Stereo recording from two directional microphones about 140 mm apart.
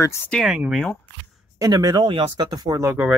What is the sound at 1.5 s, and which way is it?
Speech, 25° right (ahead or behind).